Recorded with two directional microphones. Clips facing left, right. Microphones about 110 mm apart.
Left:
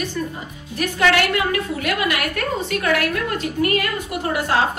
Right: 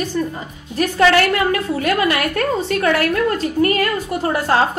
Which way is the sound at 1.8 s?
35° right (ahead or behind).